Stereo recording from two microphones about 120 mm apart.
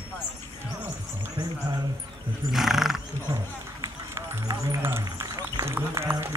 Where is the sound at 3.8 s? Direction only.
25° right (ahead or behind).